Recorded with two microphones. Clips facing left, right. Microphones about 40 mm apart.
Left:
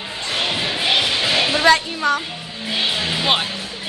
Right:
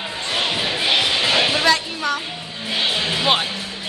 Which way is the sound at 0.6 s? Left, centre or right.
Centre.